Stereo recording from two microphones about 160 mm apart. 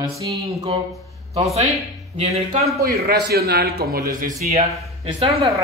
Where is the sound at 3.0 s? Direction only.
75° right (ahead or behind).